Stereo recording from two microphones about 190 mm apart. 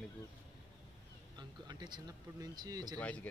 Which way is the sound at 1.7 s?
20° right (ahead or behind).